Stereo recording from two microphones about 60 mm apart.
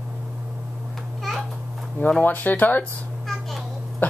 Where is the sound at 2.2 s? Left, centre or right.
Left.